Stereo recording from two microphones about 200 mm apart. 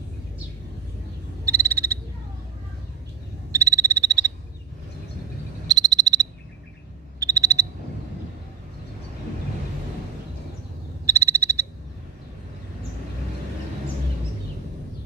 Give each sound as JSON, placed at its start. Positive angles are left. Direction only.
{"t": 1.4, "sound": "frog", "side_deg": -15}
{"t": 3.5, "sound": "frog", "side_deg": -15}
{"t": 5.7, "sound": "frog", "side_deg": -20}
{"t": 11.1, "sound": "frog", "side_deg": -15}